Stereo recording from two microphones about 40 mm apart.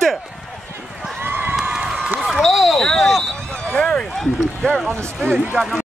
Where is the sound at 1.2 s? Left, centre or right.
Right.